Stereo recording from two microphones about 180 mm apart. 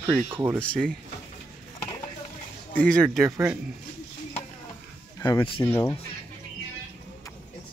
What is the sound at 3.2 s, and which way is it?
Speech, 15° right (ahead or behind).